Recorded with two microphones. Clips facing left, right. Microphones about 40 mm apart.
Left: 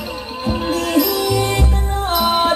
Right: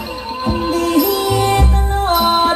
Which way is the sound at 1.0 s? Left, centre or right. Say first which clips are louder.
Right 2 dB; right.